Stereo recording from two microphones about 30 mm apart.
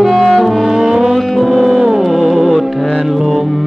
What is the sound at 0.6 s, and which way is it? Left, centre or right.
Music, centre.